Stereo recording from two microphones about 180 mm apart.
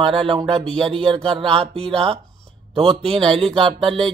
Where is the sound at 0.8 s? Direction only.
30° right (ahead or behind).